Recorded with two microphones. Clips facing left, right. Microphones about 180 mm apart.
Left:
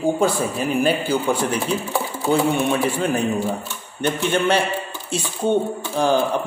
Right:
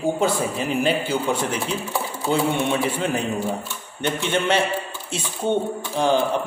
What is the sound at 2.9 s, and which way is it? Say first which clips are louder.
Speech: left 3 dB; 20° right (ahead or behind).